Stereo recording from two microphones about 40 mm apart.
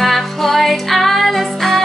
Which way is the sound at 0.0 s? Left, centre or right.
Centre.